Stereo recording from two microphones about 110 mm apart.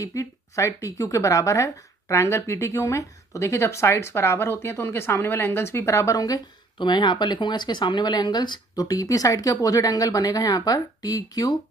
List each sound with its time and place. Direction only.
0.0 s a woman's voice: 30° left (ahead or behind)
6.8 s speech: 45° left (ahead or behind)